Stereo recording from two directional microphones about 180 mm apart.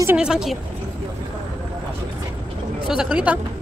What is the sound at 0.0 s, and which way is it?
Speech, 5° right (ahead or behind).